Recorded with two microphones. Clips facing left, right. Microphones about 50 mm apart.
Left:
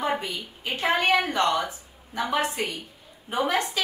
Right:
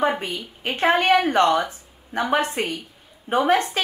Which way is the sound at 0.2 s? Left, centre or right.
Right.